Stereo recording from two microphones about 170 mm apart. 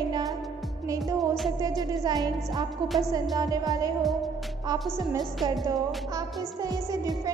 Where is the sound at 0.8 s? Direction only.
20° right (ahead or behind).